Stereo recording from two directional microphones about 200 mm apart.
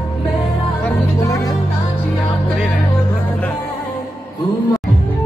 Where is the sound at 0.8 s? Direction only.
15° left (ahead or behind).